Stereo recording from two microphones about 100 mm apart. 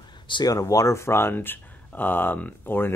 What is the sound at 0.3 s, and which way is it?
Speech, 40° left (ahead or behind).